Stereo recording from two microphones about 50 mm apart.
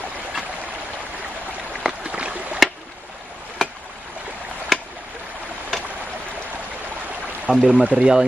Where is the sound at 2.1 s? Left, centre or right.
Right.